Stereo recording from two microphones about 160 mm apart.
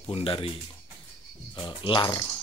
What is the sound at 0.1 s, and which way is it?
Speech, 35° left (ahead or behind).